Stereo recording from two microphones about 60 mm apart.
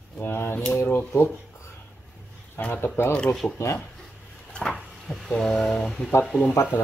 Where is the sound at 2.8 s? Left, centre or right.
Left.